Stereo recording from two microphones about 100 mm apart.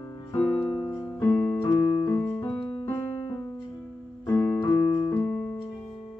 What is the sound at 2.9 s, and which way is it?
Music, 30° left (ahead or behind).